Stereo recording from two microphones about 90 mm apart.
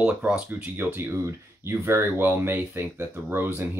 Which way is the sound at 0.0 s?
15° right (ahead or behind).